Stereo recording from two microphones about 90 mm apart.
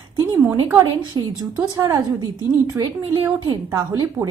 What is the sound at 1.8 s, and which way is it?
Speech, 35° right (ahead or behind).